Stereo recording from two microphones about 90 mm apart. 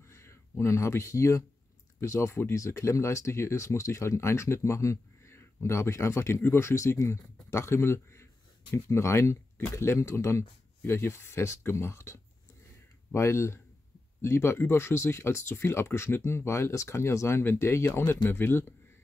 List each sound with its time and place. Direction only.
0.0 s speech: 30° left (ahead or behind)